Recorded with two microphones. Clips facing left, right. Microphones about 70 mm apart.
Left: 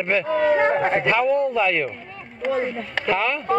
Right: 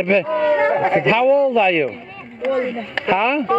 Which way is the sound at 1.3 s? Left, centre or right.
Right.